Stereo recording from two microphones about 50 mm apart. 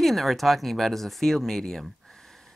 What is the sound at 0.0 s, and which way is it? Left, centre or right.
Speech, centre.